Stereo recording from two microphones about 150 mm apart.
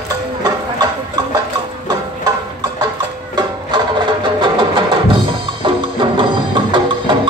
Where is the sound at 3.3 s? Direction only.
30° right (ahead or behind).